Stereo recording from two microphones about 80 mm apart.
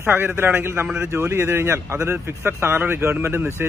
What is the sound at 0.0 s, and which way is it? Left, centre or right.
Speech, right.